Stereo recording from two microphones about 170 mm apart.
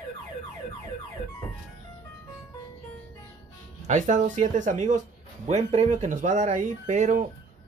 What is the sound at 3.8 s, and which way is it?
Speech, 45° right (ahead or behind).